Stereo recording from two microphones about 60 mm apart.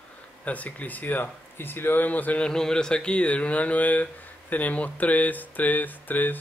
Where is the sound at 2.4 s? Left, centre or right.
Centre.